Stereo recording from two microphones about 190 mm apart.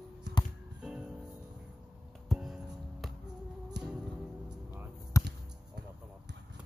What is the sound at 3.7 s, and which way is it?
Music, 60° right (ahead or behind).